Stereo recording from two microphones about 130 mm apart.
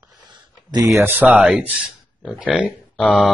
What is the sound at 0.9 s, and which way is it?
Speech, 15° right (ahead or behind).